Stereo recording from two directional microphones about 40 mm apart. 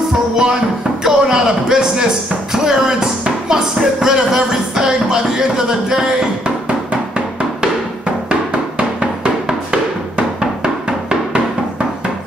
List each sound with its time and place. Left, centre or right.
1.0 s a sound: centre
2.5 s speech: centre
8.3 s music: right